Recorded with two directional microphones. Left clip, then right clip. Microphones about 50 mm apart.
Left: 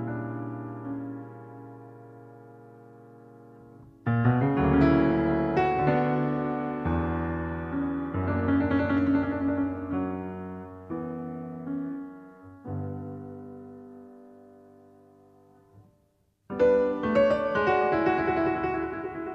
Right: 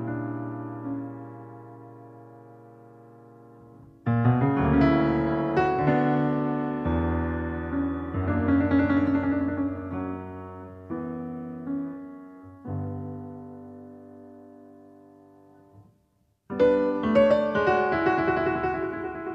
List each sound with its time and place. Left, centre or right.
0.0 s music: centre
4.0 s music: centre
16.4 s music: centre